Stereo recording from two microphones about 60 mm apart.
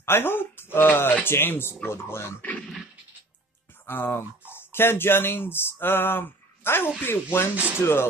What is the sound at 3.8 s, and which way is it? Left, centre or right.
Speech, left.